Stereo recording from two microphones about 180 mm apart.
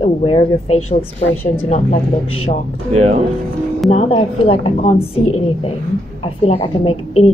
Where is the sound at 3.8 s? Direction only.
35° left (ahead or behind).